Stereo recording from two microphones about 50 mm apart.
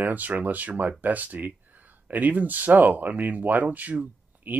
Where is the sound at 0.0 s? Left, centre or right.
Right.